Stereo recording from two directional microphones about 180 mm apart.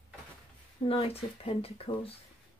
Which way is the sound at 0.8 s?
35° left (ahead or behind).